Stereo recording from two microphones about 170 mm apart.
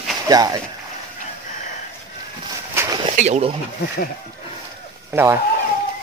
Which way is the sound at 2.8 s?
15° right (ahead or behind).